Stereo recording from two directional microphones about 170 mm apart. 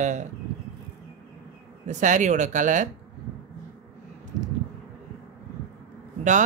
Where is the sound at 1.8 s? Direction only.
45° right (ahead or behind).